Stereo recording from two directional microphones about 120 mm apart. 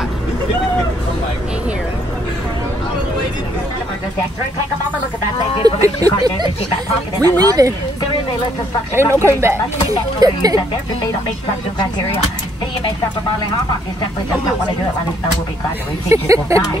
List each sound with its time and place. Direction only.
5.6 s speech: 30° right (ahead or behind)
9.1 s speech: 20° right (ahead or behind)
16.1 s speech: 25° right (ahead or behind)